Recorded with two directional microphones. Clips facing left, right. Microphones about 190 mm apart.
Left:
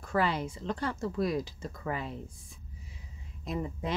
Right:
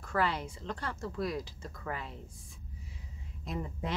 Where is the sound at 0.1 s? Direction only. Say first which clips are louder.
Left 3 dB; 15° left (ahead or behind).